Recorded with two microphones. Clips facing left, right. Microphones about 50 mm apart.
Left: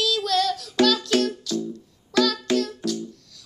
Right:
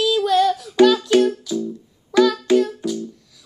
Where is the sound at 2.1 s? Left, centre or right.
Centre.